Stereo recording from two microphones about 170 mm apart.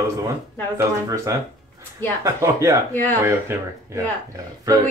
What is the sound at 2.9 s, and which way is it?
Speech, 10° left (ahead or behind).